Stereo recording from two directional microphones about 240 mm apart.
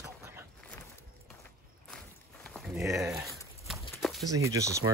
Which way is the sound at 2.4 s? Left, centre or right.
Centre.